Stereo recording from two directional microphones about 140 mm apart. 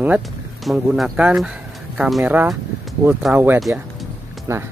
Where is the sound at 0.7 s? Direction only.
Centre (ahead or behind).